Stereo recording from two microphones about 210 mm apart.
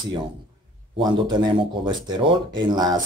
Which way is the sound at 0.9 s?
20° right (ahead or behind).